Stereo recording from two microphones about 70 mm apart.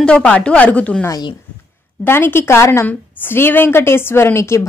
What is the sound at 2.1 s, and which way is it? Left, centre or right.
Speech, left.